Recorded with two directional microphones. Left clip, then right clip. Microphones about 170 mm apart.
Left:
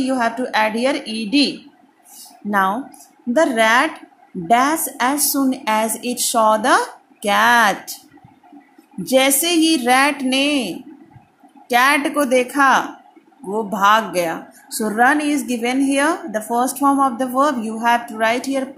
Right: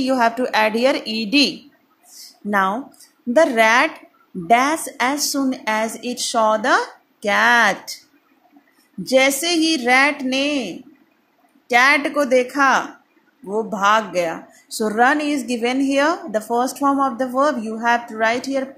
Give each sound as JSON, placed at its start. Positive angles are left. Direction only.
{"t": 0.0, "sound": "speech", "side_deg": -15}
{"t": 2.5, "sound": "a woman's voice", "side_deg": -10}
{"t": 9.0, "sound": "speech", "side_deg": -5}